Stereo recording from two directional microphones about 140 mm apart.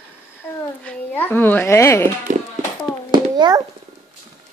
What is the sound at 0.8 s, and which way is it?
A woman's voice, 15° left (ahead or behind).